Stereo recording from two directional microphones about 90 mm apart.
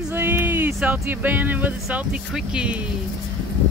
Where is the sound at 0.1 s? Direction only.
25° right (ahead or behind).